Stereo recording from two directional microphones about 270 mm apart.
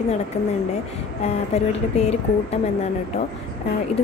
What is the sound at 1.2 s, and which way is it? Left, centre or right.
Speech, left.